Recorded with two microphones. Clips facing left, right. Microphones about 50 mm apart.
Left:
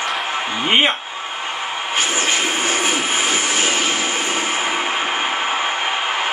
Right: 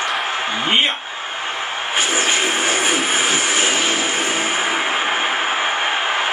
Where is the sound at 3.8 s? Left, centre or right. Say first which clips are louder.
Right 1 dB; centre.